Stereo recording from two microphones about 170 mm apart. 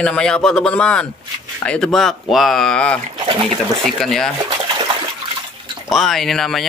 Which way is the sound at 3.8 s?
Centre (ahead or behind).